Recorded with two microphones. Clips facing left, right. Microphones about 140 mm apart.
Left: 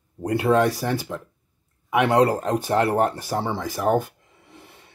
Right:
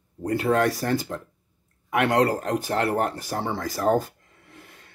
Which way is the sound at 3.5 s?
10° left (ahead or behind).